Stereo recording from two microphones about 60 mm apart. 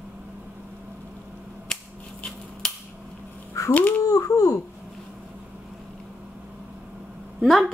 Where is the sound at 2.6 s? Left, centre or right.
Centre.